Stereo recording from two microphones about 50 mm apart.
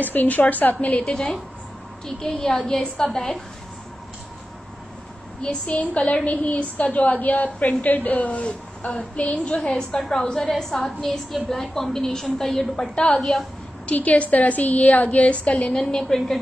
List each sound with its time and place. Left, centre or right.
0.0 s a woman's voice: left
1.0 s a woman's voice: centre
5.4 s a woman's voice: left
9.9 s a woman's voice: centre
12.9 s a woman's voice: centre
13.2 s a woman's voice: centre
13.9 s a woman's voice: left
15.7 s a woman's voice: centre